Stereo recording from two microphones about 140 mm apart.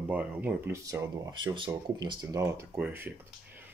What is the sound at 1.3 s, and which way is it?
Speech, 35° right (ahead or behind).